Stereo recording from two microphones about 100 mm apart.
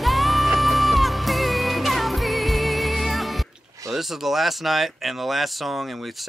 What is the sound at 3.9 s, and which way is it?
Speech, 5° right (ahead or behind).